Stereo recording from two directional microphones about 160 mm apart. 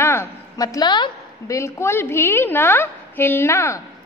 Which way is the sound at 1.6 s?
15° left (ahead or behind).